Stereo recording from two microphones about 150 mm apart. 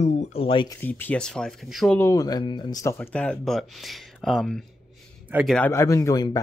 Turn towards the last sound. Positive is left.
turn(degrees=25)  # may be behind; listen again after turning